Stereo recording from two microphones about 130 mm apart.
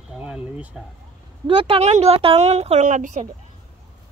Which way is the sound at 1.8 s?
55° right (ahead or behind).